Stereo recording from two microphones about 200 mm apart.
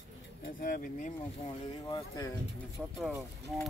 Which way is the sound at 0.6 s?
40° left (ahead or behind).